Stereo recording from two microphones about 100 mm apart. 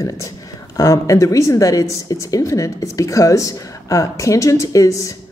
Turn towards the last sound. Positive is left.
turn(degrees=30)  # may be behind; listen again after turning